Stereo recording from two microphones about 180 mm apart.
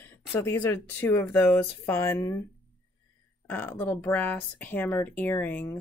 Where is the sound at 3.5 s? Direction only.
10° left (ahead or behind).